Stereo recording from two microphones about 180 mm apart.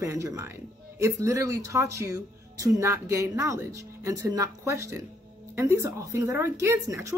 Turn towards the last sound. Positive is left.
turn(degrees=-15)  # may be behind; listen again after turning